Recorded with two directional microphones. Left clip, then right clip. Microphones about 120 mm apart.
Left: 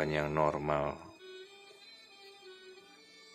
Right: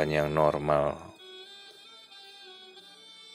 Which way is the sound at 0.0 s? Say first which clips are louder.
Right 6 dB; 35° right (ahead or behind).